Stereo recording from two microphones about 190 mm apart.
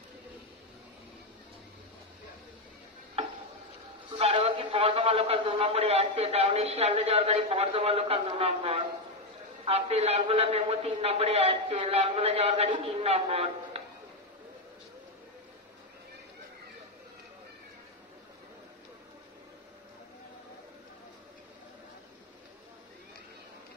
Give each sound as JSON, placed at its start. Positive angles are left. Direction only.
{"t": 3.2, "sound": "stir", "side_deg": -30}
{"t": 4.2, "sound": "a man's voice", "side_deg": -30}